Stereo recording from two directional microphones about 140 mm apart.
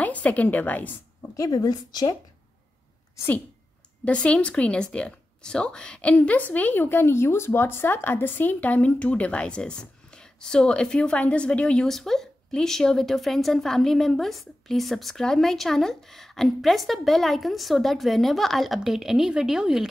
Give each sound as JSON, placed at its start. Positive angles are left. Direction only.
{"t": 0.0, "sound": "a woman's voice", "side_deg": 10}
{"t": 1.3, "sound": "speech", "side_deg": 25}
{"t": 4.0, "sound": "speech", "side_deg": 10}